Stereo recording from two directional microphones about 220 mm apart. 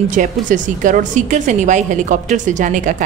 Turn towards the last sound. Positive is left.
turn(degrees=-35)  # may be behind; listen again after turning